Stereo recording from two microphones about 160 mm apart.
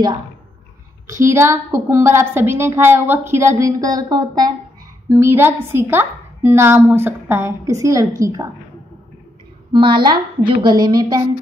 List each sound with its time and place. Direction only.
1.2 s a woman's voice: 15° right (ahead or behind)
9.7 s a woman's voice: 30° right (ahead or behind)